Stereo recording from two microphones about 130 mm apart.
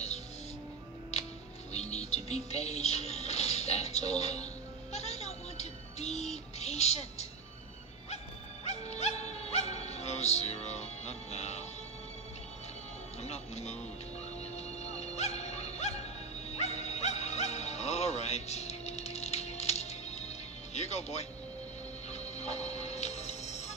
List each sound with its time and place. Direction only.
1.7 s music: 55° left (ahead or behind)
8.6 s music: 55° left (ahead or behind)
13.2 s music: 55° left (ahead or behind)
14.8 s music: 55° left (ahead or behind)